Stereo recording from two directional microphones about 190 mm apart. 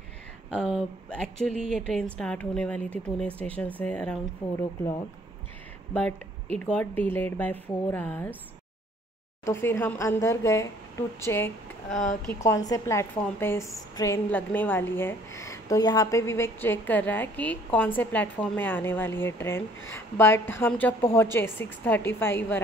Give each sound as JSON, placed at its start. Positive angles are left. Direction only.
{"t": 0.7, "sound": "a woman's voice", "side_deg": 5}
{"t": 6.6, "sound": "a woman's voice", "side_deg": 10}
{"t": 9.4, "sound": "a woman's voice", "side_deg": 15}
{"t": 12.0, "sound": "a woman's voice", "side_deg": 40}
{"t": 12.4, "sound": "a woman's voice", "side_deg": 20}